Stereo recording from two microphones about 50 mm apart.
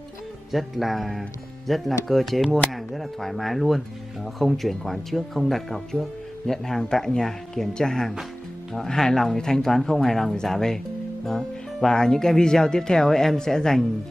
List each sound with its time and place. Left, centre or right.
0.5 s speech: centre
11.2 s music: centre
11.9 s speech: centre